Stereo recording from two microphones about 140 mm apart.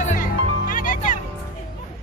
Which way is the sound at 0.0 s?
70° left (ahead or behind).